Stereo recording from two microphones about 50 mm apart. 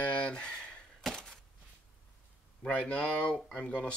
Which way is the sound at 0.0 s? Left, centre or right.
Left.